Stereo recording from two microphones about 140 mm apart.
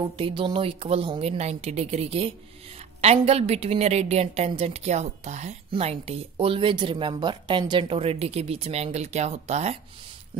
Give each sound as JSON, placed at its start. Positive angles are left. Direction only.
{"t": 0.2, "sound": "a woman's voice", "side_deg": -35}
{"t": 8.0, "sound": "a woman's voice", "side_deg": -45}